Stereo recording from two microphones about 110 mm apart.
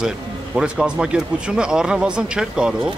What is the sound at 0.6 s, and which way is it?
Speech, 5° right (ahead or behind).